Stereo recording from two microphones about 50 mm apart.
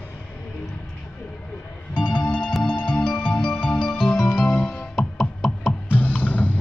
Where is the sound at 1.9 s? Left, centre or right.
Left.